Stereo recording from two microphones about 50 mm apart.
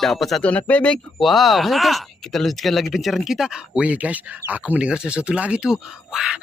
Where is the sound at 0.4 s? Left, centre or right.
Left.